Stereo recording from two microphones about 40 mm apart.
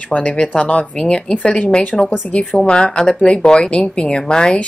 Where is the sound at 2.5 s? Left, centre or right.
Centre.